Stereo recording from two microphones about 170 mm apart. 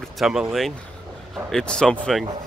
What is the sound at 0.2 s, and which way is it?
Speech, centre (ahead or behind).